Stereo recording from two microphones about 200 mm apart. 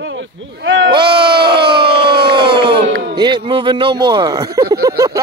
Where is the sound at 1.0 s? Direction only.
55° right (ahead or behind).